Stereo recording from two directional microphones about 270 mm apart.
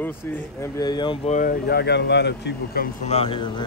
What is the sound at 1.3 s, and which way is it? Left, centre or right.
Speech, left.